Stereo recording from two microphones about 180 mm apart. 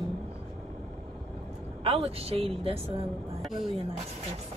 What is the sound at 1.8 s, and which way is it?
Speech, 35° right (ahead or behind).